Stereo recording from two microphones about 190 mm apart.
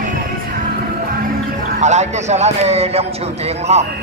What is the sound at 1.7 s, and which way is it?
A man's voice, 40° right (ahead or behind).